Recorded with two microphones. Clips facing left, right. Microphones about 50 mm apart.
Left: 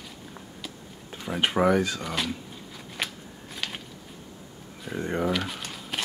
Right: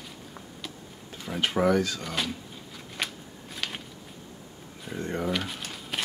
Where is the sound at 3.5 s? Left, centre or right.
Centre.